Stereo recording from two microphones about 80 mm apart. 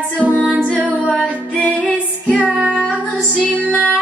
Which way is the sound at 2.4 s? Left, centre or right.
Centre.